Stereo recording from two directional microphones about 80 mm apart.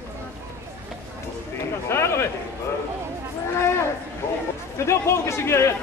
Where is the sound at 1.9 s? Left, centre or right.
Left.